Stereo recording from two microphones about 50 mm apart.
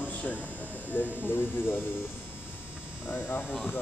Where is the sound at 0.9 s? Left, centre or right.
Left.